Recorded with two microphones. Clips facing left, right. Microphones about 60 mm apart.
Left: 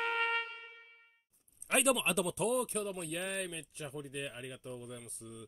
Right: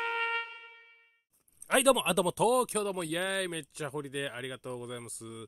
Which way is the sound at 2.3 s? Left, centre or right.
Right.